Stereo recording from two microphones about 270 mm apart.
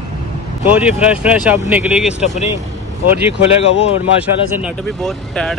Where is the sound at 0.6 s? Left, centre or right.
Centre.